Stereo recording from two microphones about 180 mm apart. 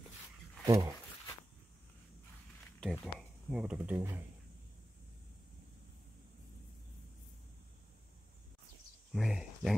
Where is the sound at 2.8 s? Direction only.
Centre (ahead or behind).